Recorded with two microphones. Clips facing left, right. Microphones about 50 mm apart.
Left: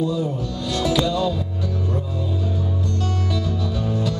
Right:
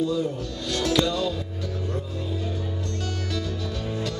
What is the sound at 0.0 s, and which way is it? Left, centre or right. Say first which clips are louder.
Speech: left 2 dB; centre.